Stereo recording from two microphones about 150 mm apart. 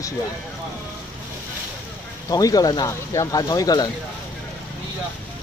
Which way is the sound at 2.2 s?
25° left (ahead or behind).